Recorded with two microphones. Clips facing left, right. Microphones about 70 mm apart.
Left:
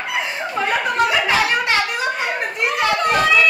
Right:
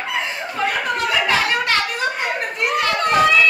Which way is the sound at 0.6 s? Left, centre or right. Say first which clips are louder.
Left 3 dB; centre.